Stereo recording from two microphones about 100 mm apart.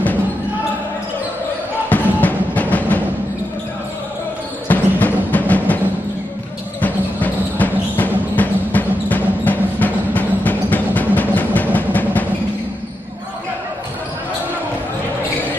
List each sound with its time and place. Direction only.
1.9 s music: 15° left (ahead or behind)
4.6 s music: 15° left (ahead or behind)
6.8 s music: 15° left (ahead or behind)